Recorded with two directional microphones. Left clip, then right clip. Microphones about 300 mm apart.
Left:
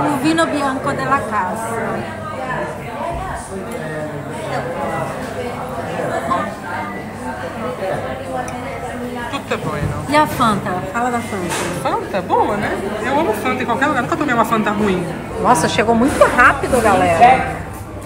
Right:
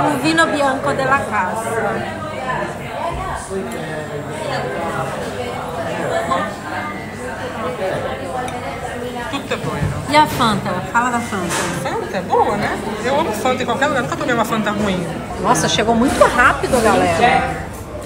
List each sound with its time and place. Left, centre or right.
0.1 s a woman's voice: centre
10.1 s a woman's voice: centre
11.8 s a woman's voice: centre